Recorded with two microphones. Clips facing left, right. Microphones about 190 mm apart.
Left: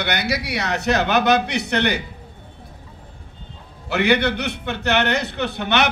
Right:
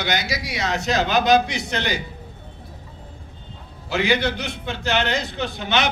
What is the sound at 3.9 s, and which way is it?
A man's voice, 65° left (ahead or behind).